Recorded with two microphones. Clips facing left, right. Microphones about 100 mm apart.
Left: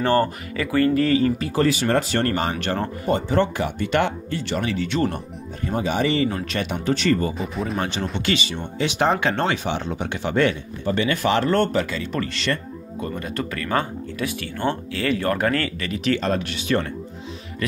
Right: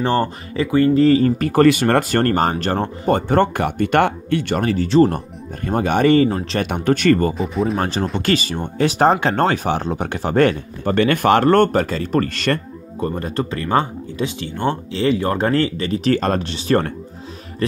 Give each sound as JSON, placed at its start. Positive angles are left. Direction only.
{"t": 0.0, "sound": "speech", "side_deg": -20}
{"t": 1.4, "sound": "speech", "side_deg": -55}
{"t": 2.5, "sound": "speech", "side_deg": -35}
{"t": 3.1, "sound": "speech", "side_deg": -55}
{"t": 5.7, "sound": "speech", "side_deg": -55}
{"t": 6.2, "sound": "speech", "side_deg": -35}
{"t": 6.6, "sound": "speech", "side_deg": -55}
{"t": 7.3, "sound": "speech", "side_deg": 0}
{"t": 7.8, "sound": "speech", "side_deg": -40}
{"t": 13.0, "sound": "speech", "side_deg": -35}